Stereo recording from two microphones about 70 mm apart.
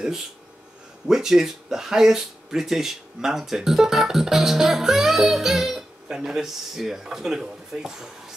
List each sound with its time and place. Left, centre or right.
1.0 s speech: centre